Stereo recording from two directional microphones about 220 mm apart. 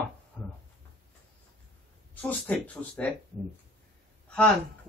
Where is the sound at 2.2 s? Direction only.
5° left (ahead or behind).